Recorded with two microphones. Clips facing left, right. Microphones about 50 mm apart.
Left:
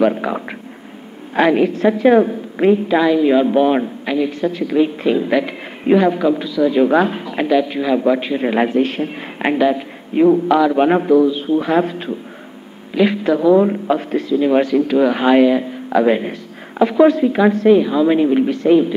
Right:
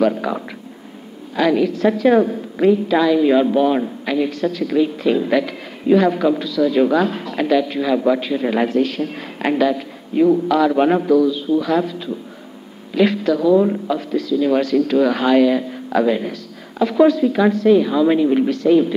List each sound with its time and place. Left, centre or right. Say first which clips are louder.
0.2 s a man's voice: left 1 dB; left
3.2 s a man's voice: left 1 dB; centre
3.4 s speech: left 2 dB; left
3.8 s a man's voice: left 1 dB; centre
10.6 s a man's voice: left 1 dB; centre
10.9 s a man's voice: left 2 dB; left
12.9 s speech: left 1 dB; centre
17.8 s a man's voice: left 1 dB; centre